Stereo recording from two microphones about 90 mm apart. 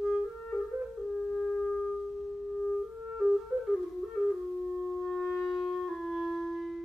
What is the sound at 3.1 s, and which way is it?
Flute, 5° right (ahead or behind).